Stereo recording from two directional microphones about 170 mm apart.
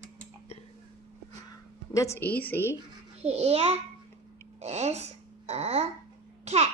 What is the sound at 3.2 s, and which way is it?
A child's voice, 40° right (ahead or behind).